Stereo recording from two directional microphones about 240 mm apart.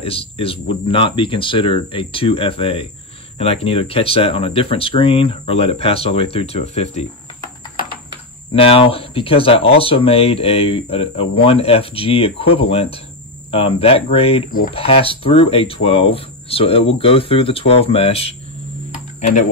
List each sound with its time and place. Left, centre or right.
0.0 s speech: left
8.5 s speech: left